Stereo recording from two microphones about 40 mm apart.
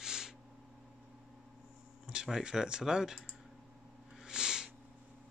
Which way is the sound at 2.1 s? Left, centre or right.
Right.